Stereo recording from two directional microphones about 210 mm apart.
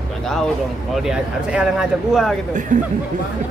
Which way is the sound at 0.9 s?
Centre (ahead or behind).